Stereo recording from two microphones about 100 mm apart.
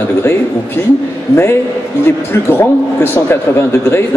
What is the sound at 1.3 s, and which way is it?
A man's voice, 25° left (ahead or behind).